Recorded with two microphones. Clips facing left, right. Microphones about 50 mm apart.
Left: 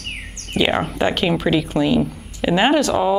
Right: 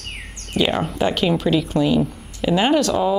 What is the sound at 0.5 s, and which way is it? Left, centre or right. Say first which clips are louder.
Speech: left 1 dB; left.